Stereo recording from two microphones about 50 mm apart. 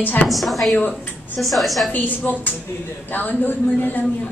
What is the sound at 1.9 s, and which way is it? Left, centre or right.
A woman's voice, left.